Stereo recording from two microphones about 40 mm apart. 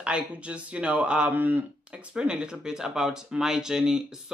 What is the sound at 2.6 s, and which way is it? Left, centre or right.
Speech, centre.